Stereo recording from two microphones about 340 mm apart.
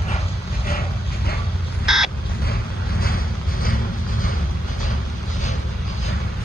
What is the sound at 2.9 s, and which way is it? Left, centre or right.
Vehicle, left.